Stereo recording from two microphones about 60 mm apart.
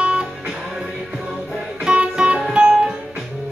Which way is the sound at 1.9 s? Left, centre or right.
Centre.